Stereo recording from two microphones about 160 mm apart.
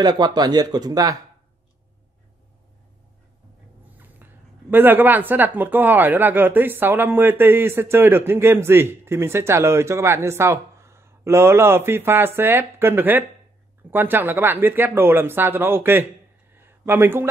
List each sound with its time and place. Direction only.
0.0 s speech: 25° right (ahead or behind)
4.0 s speech: 10° right (ahead or behind)
16.5 s a sound: 15° right (ahead or behind)